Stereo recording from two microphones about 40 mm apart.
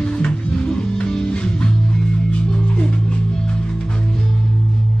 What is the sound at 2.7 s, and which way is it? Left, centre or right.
Music, left.